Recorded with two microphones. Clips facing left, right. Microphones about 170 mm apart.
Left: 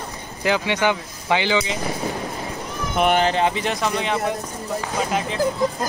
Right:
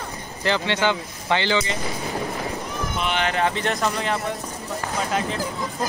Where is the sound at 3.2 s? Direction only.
30° left (ahead or behind).